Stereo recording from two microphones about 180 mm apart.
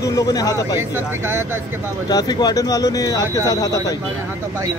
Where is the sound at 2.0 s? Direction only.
20° left (ahead or behind).